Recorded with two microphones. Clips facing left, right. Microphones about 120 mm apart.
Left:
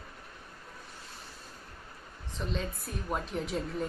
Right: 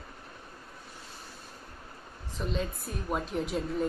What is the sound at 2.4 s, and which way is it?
A woman's voice, centre (ahead or behind).